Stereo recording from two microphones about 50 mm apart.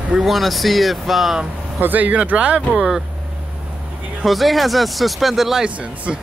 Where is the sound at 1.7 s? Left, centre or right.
Right.